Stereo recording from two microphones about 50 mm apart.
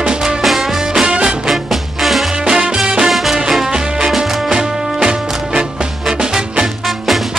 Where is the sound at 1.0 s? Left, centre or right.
Centre.